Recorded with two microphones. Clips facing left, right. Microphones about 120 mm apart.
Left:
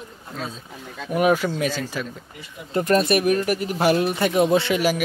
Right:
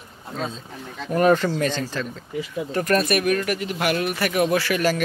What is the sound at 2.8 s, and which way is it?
A man's voice, 25° left (ahead or behind).